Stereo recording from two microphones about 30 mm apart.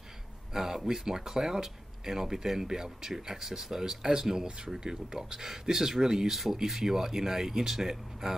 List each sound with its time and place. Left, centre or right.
0.5 s speech: centre
6.3 s speech: centre